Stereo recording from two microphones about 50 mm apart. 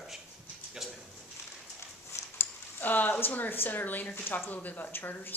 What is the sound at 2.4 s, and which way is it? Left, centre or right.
A woman's voice, left.